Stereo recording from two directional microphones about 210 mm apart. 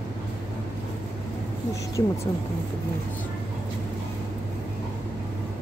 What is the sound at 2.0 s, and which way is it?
Speech, 20° left (ahead or behind).